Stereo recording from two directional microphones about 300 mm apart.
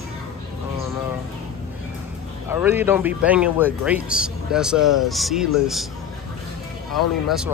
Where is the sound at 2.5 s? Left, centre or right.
Centre.